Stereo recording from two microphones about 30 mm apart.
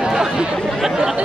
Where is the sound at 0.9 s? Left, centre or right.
Centre.